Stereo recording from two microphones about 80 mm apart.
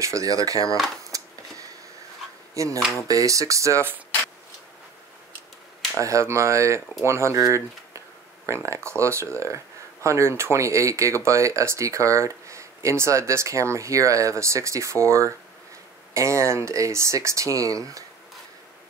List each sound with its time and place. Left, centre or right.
0.0 s speech: right
1.1 s a sound: right
2.5 s dishes: right
3.1 s speech: right
5.9 s speech: right